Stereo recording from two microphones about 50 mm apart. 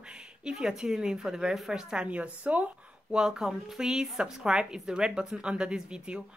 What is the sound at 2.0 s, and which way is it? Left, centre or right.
Speech, right.